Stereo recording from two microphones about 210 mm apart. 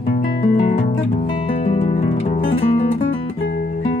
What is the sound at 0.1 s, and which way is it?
Music, 35° left (ahead or behind).